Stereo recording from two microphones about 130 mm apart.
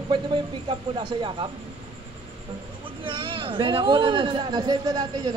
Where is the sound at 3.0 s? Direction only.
40° right (ahead or behind).